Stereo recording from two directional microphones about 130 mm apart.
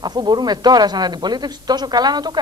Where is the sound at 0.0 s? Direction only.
35° right (ahead or behind).